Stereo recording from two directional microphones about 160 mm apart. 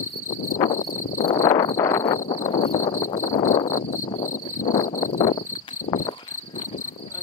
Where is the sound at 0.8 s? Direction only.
55° left (ahead or behind).